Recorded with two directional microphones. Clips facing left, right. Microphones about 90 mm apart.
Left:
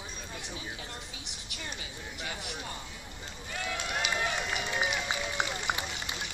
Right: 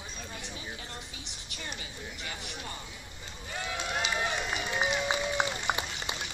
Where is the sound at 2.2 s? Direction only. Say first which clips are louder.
Left 4 dB; 15° left (ahead or behind).